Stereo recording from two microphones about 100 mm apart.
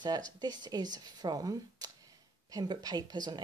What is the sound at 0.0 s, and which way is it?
Speech, 45° right (ahead or behind).